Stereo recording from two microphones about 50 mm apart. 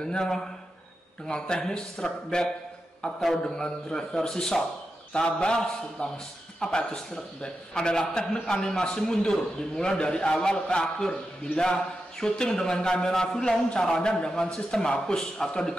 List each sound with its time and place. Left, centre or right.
0.0 s a man's voice: centre